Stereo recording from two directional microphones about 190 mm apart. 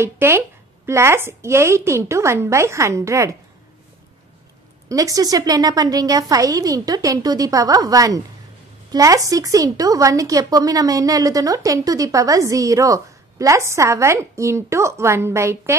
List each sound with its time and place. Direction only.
0.0 s speech: 10° right (ahead or behind)
4.8 s a woman's voice: 20° right (ahead or behind)